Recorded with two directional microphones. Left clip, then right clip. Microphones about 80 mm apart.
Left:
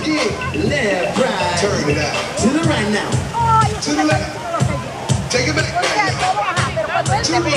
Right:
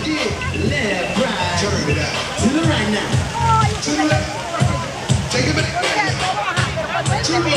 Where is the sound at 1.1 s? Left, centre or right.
Left.